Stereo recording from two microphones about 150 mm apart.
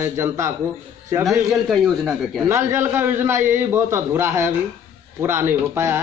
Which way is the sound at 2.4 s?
20° right (ahead or behind).